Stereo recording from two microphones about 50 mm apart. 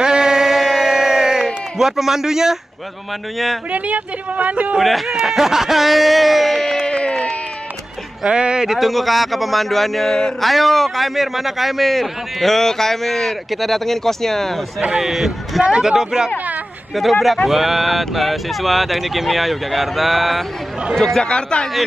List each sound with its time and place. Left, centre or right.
0.0 s a sound: centre
3.7 s speech: right
4.7 s a man's voice: centre
6.9 s a sound: centre
8.3 s a man's voice: centre
15.0 s a man's voice: centre
15.6 s speech: centre
16.9 s a man's voice: centre
21.2 s speech: centre